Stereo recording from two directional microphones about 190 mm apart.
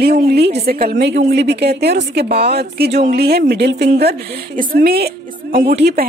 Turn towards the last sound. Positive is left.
turn(degrees=-55)  # may be behind; listen again after turning